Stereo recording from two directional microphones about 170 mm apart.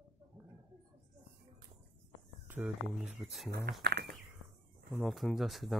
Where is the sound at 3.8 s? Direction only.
75° right (ahead or behind).